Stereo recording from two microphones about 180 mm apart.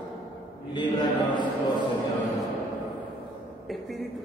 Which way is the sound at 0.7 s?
25° left (ahead or behind).